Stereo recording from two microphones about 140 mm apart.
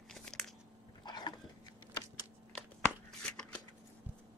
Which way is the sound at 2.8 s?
10° left (ahead or behind).